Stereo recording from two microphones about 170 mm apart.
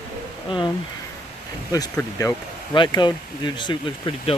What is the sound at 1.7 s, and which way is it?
Speech, 20° left (ahead or behind).